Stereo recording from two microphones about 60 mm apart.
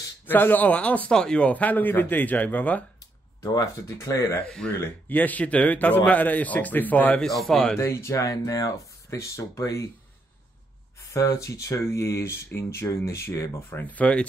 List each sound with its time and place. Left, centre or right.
0.3 s a man's voice: left
1.1 s speech: centre
1.5 s a man's voice: left
3.5 s speech: left
4.5 s speech: centre
5.0 s a man's voice: left
7.2 s a man's voice: centre
7.8 s speech: left
8.3 s speech: left
9.1 s speech: left
11.1 s speech: left
13.8 s a man's voice: left